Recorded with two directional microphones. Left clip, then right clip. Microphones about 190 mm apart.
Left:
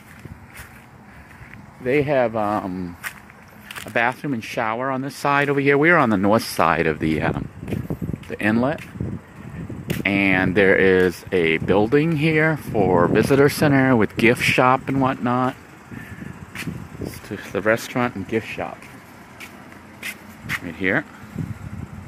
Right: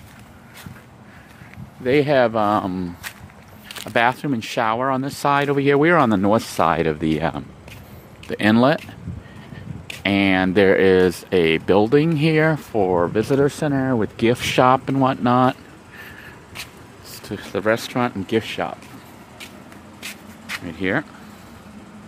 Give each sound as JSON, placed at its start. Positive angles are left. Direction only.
{"t": 1.9, "sound": "speech", "side_deg": -15}
{"t": 10.0, "sound": "speech", "side_deg": -10}
{"t": 12.9, "sound": "speech", "side_deg": 5}
{"t": 14.1, "sound": "speech", "side_deg": 0}
{"t": 17.3, "sound": "speech", "side_deg": -5}
{"t": 18.2, "sound": "speech", "side_deg": -20}
{"t": 20.0, "sound": "a sound", "side_deg": 0}